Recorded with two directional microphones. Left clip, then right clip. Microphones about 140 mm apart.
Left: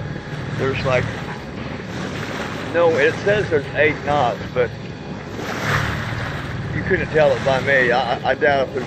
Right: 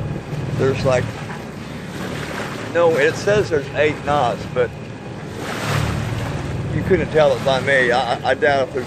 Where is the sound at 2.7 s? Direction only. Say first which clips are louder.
Even; 35° right (ahead or behind).